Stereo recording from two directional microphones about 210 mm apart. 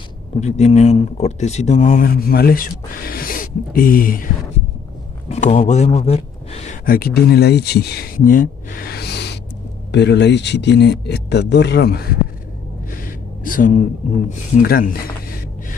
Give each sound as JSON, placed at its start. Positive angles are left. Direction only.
{"t": 0.4, "sound": "a man's voice", "side_deg": 30}
{"t": 12.9, "sound": "gasp", "side_deg": 40}
{"t": 14.6, "sound": "speech", "side_deg": 45}